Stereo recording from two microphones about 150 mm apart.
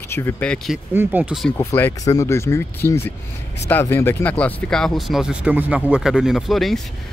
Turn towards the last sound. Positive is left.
turn(degrees=0)  # may be behind; listen again after turning